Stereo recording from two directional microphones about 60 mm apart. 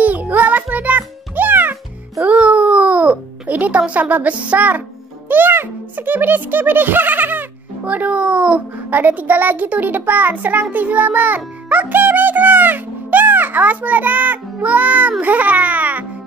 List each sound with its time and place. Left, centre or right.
0.0 s music: right
5.3 s a child's voice: right